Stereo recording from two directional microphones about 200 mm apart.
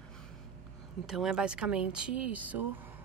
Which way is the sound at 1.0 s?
Centre (ahead or behind).